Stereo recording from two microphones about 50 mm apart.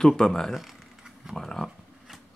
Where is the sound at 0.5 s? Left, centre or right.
Centre.